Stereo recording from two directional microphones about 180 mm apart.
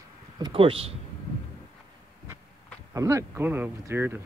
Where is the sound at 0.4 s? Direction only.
30° right (ahead or behind).